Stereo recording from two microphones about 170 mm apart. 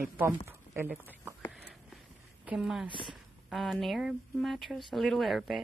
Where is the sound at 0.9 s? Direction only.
10° right (ahead or behind).